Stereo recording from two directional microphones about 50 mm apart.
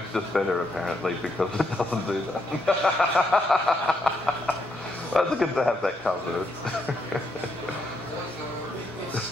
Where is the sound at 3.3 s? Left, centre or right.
Centre.